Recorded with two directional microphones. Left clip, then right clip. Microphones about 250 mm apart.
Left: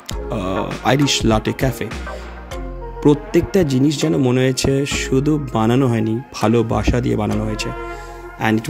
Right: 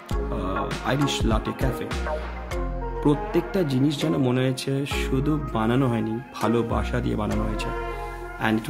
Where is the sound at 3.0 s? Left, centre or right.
Left.